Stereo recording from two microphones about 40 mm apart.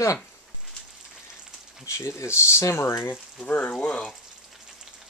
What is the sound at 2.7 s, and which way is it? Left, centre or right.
Speech, left.